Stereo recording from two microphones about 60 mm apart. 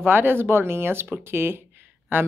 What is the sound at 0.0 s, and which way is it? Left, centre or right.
Speech, right.